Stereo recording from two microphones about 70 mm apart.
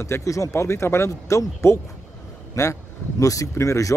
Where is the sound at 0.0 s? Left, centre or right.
Left.